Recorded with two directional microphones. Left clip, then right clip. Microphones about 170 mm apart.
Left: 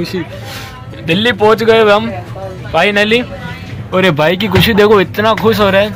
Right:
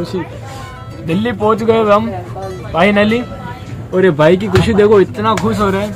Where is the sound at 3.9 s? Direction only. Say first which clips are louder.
Right 1 dB; 35° left (ahead or behind).